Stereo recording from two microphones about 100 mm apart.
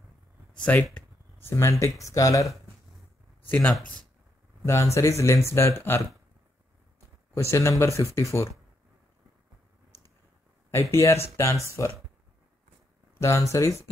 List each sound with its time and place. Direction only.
0.6 s speech: 10° left (ahead or behind)
1.4 s speech: 30° left (ahead or behind)
3.4 s speech: 15° left (ahead or behind)
4.6 s speech: 30° left (ahead or behind)
7.3 s speech: 30° left (ahead or behind)
10.7 s speech: 25° left (ahead or behind)
13.2 s speech: 30° left (ahead or behind)